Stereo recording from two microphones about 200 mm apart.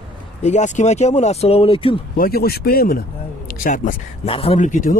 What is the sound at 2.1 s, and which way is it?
Speech, 50° left (ahead or behind).